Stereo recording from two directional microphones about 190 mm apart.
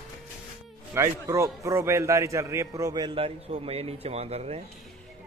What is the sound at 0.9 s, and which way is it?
A man's voice, 15° right (ahead or behind).